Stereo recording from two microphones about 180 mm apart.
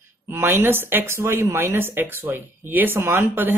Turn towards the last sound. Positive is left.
turn(degrees=-10)  # may be behind; listen again after turning